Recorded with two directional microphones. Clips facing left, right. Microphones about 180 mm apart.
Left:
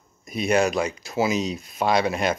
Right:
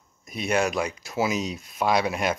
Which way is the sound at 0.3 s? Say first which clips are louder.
Left 4 dB; centre (ahead or behind).